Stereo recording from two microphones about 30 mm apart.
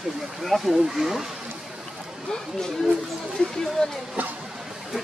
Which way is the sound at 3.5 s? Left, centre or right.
Left.